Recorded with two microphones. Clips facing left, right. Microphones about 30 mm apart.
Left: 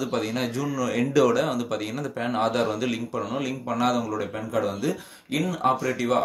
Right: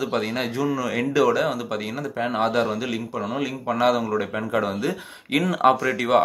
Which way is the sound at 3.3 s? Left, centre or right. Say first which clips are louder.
Right 2 dB; centre.